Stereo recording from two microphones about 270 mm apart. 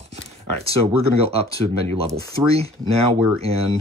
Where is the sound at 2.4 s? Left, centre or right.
Right.